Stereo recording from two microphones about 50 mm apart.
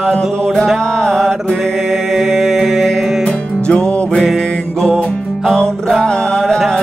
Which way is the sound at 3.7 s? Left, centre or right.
Centre.